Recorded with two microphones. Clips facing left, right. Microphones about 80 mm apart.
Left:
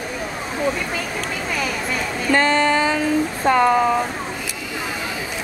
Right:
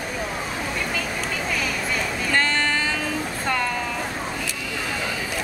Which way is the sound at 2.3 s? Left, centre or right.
Centre.